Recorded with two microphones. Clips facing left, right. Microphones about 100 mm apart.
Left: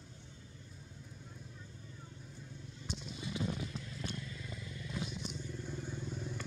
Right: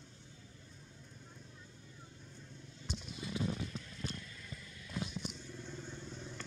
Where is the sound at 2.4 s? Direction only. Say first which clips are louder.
Left 3 dB; 5° left (ahead or behind).